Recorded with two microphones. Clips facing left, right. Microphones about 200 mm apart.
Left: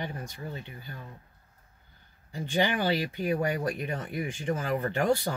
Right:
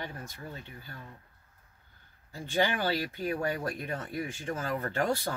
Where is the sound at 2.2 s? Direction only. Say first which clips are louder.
Left 2 dB; 15° left (ahead or behind).